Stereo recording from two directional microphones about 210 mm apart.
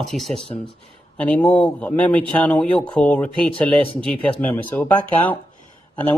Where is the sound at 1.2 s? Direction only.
5° left (ahead or behind).